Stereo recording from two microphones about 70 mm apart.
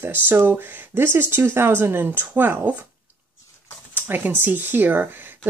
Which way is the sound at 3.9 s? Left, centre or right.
Right.